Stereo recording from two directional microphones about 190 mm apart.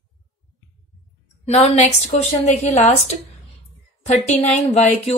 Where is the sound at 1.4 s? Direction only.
35° left (ahead or behind).